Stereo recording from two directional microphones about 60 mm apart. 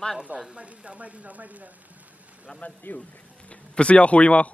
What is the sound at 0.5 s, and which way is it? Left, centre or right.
Speech, centre.